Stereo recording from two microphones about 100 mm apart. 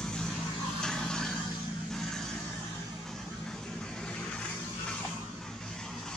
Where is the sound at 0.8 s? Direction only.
5° left (ahead or behind).